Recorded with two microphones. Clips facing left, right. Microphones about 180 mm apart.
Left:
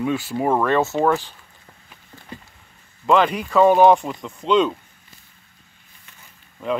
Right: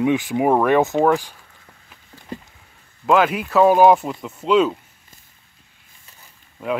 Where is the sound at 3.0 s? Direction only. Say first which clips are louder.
Right 1 dB; 5° right (ahead or behind).